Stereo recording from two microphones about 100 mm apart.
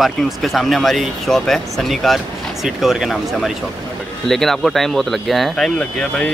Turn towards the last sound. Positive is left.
turn(degrees=5)  # may be behind; listen again after turning